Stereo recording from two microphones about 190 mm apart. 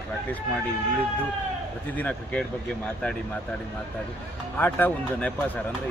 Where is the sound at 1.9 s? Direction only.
5° left (ahead or behind).